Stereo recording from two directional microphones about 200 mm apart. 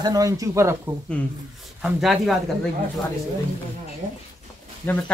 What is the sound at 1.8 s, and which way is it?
Speech, centre (ahead or behind).